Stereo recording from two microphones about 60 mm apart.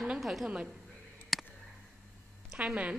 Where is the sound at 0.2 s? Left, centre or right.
Centre.